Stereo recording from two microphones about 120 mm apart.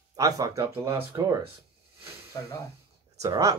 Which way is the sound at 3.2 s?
30° right (ahead or behind).